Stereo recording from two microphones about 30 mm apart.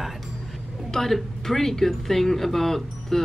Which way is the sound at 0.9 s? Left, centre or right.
Centre.